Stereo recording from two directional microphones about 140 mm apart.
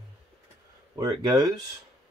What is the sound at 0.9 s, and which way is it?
Speech, 30° right (ahead or behind).